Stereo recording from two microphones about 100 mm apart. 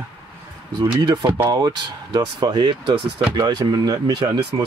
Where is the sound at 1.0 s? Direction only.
45° right (ahead or behind).